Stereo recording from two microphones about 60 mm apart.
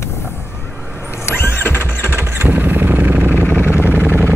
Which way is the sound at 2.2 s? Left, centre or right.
Right.